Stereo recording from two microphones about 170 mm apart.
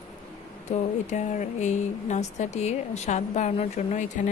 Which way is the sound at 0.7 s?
45° left (ahead or behind).